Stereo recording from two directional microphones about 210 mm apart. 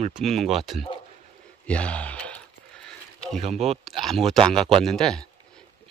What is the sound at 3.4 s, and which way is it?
Speech, 30° right (ahead or behind).